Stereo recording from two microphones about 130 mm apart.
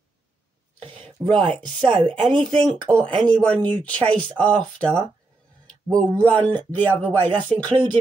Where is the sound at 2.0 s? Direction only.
5° left (ahead or behind).